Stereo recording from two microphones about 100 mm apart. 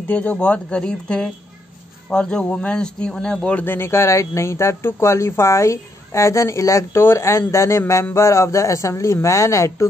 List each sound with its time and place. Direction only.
0.1 s a man's voice: 15° left (ahead or behind); by 9.8 s 30° left (ahead or behind)